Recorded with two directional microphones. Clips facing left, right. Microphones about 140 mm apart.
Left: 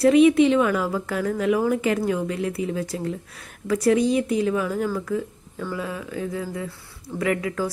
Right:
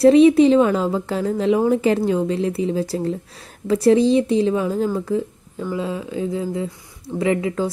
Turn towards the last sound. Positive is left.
turn(degrees=-25)  # may be behind; listen again after turning